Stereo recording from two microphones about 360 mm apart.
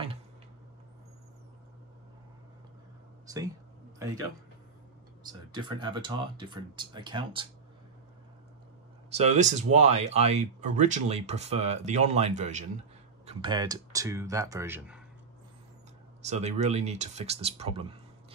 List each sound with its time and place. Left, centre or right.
3.3 s speech: centre
5.2 s speech: centre
9.1 s speech: centre
16.2 s speech: centre